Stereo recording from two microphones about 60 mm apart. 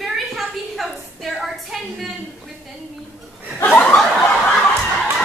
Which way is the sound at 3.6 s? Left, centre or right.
Left.